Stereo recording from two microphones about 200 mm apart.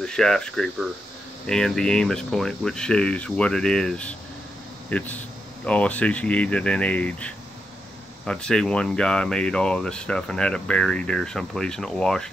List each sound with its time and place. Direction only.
0.0 s speech: 5° left (ahead or behind)